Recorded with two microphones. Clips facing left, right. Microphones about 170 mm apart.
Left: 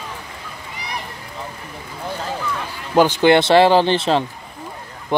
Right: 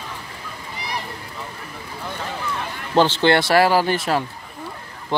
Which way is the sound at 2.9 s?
15° left (ahead or behind).